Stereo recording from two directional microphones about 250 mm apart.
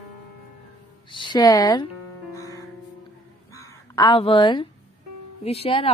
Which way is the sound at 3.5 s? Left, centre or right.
Centre.